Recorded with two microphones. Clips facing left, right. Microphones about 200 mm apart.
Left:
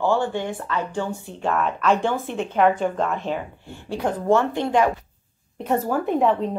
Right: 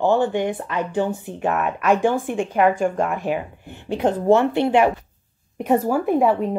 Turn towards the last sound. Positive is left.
turn(degrees=-10)  # may be behind; listen again after turning